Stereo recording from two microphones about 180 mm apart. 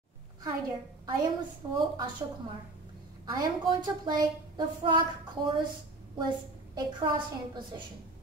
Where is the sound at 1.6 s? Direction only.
25° right (ahead or behind).